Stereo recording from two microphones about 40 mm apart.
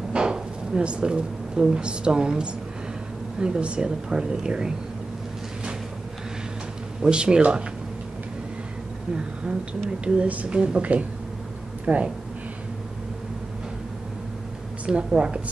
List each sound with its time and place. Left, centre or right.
0.1 s speech: right
7.0 s speech: right
9.1 s speech: right
15.1 s speech: right